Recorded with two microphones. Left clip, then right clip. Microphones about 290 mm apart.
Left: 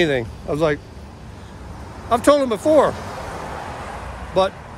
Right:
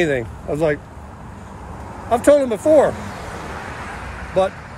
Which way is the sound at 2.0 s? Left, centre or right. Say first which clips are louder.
Right 2 dB; centre.